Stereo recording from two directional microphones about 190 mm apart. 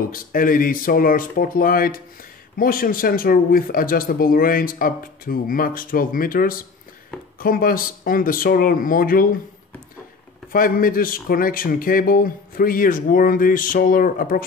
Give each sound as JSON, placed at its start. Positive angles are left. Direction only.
{"t": 0.1, "sound": "speech", "side_deg": 45}
{"t": 10.5, "sound": "speech", "side_deg": 50}